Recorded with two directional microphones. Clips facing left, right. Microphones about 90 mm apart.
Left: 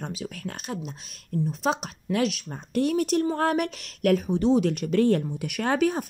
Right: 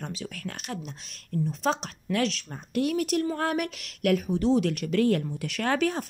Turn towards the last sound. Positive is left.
turn(degrees=20)  # may be behind; listen again after turning